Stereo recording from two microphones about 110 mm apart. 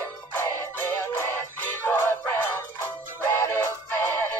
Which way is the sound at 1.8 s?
20° left (ahead or behind).